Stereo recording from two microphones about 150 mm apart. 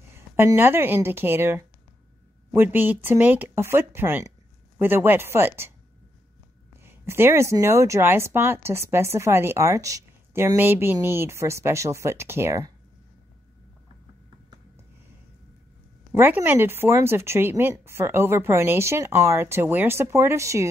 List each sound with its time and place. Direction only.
0.4 s a woman's voice: 15° right (ahead or behind)
6.8 s a woman's voice: 15° right (ahead or behind)
16.1 s a woman's voice: 15° right (ahead or behind)